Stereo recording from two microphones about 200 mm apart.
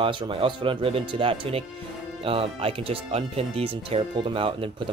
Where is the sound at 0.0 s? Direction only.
25° right (ahead or behind).